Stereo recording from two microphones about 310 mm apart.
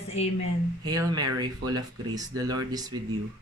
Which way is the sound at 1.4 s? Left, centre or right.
Centre.